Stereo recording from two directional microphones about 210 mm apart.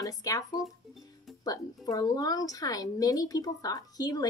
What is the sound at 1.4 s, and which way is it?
A woman's voice, 20° left (ahead or behind).